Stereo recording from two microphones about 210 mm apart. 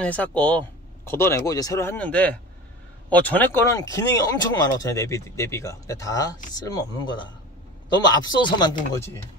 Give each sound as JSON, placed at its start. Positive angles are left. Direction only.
{"t": 0.0, "sound": "speech", "side_deg": 5}
{"t": 8.1, "sound": "speech", "side_deg": 20}